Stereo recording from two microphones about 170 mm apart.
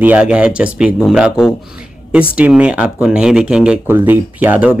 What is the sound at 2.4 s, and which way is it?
Speech, 5° right (ahead or behind).